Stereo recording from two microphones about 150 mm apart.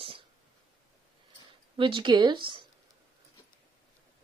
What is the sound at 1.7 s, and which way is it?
Speech, 35° right (ahead or behind).